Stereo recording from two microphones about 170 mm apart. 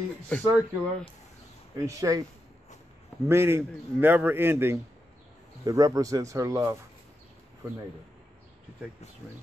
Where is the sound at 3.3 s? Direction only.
15° right (ahead or behind).